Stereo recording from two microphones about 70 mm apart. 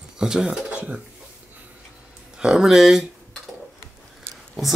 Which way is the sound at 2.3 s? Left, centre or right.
Centre.